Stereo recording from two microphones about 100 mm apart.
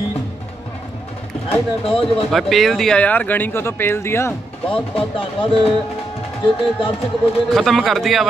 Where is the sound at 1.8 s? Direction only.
65° left (ahead or behind).